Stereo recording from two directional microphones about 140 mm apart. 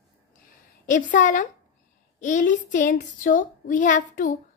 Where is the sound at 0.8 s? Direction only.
65° left (ahead or behind).